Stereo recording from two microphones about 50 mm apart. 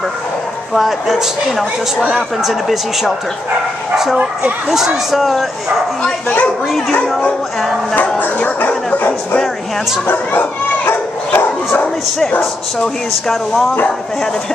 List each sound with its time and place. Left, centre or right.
0.7 s speech: centre
8.2 s speech: left
10.9 s dog: left
12.7 s speech: centre